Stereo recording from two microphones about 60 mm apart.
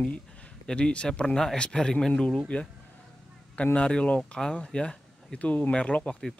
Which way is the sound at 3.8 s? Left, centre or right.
Centre.